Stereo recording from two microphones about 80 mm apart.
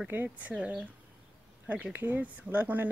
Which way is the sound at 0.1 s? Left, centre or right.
Right.